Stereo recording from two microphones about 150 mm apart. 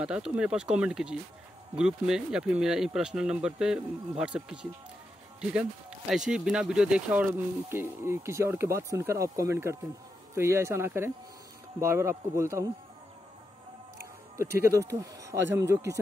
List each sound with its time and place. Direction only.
0.0 s speech: 5° right (ahead or behind)
14.3 s speech: 20° right (ahead or behind)